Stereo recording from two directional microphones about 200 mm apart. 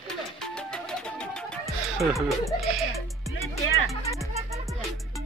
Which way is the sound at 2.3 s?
Centre (ahead or behind).